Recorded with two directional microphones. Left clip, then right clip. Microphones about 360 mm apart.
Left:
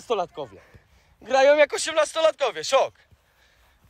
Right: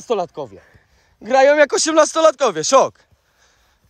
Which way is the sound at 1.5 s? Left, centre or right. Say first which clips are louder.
Right 5 dB; centre.